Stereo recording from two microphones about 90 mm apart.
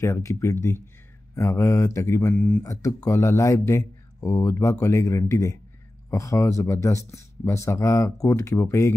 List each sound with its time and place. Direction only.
0.0 s speech: 35° left (ahead or behind)
2.3 s speech: 15° left (ahead or behind)
2.6 s speech: 40° left (ahead or behind)